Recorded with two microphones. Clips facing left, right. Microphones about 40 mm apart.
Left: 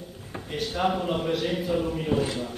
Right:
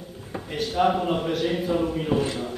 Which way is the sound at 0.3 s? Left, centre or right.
Centre.